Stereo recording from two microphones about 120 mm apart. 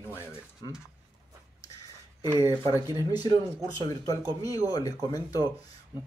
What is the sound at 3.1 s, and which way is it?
Speech, 35° left (ahead or behind).